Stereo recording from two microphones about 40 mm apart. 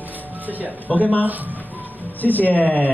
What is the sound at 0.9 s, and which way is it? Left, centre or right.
Speech, left.